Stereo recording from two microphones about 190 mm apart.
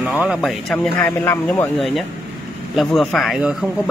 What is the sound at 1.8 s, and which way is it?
A woman's voice, centre (ahead or behind).